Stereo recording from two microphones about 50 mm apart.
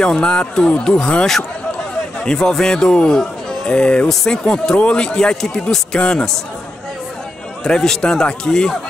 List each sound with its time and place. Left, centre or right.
0.0 s speech: centre
5.9 s a man's voice: left
7.6 s speech: centre